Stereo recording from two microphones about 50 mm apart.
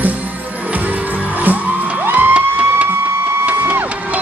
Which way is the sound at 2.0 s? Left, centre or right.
Right.